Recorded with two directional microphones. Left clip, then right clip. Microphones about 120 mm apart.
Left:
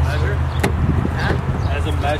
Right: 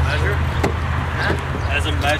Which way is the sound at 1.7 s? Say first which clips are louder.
Right 3 dB; 25° right (ahead or behind).